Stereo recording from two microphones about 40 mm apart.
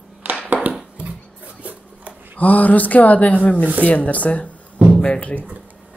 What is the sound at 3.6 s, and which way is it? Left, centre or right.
Speech, right.